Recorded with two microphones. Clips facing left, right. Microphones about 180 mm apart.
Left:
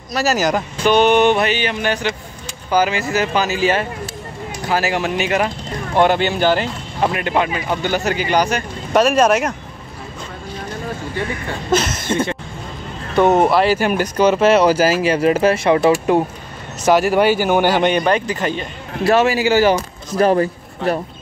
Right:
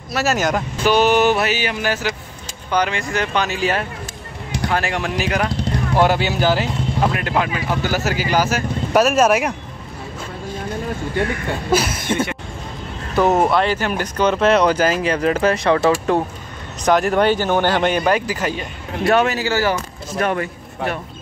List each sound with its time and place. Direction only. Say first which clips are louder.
0.1 s speech: left 2 dB; centre (ahead or behind)
11.7 s speech: left 1 dB; 10° right (ahead or behind); by 16.2 s 15° left (ahead or behind)
16.8 s speech: left 2 dB; 5° left (ahead or behind)
20.2 s a man's voice: left 6 dB; 35° left (ahead or behind)